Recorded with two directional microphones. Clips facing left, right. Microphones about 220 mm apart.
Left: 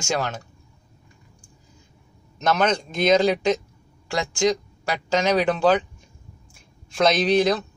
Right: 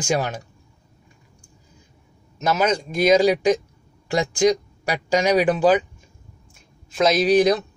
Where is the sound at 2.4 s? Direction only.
5° right (ahead or behind).